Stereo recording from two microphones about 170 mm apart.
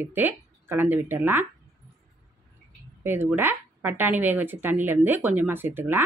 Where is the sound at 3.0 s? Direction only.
10° right (ahead or behind).